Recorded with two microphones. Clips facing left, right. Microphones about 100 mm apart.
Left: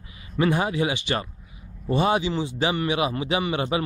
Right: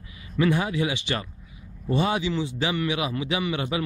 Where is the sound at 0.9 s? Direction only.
50° left (ahead or behind).